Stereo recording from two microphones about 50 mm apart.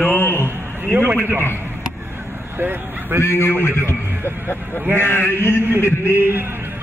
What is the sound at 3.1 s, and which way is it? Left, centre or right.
Speech, left.